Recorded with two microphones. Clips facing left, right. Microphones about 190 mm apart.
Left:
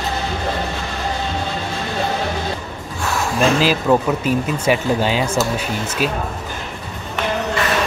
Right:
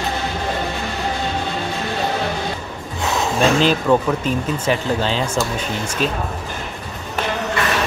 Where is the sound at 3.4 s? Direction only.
5° left (ahead or behind).